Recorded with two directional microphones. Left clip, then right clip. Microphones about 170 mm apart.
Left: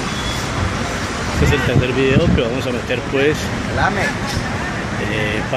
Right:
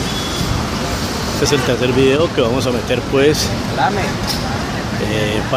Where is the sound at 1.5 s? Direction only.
25° right (ahead or behind).